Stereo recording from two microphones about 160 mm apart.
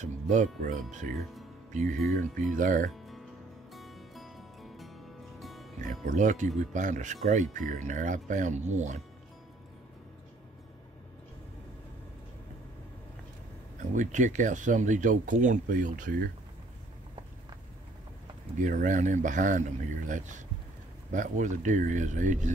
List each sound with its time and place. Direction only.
0.0 s speech: 50° right (ahead or behind)
2.0 s speech: centre (ahead or behind)
2.5 s speech: 55° right (ahead or behind)
3.7 s music: centre (ahead or behind)
5.8 s speech: 50° right (ahead or behind)
13.9 s speech: 50° right (ahead or behind)
18.6 s speech: 55° right (ahead or behind)
21.1 s speech: 55° right (ahead or behind)